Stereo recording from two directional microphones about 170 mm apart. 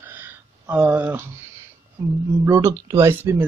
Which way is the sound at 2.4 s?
20° right (ahead or behind).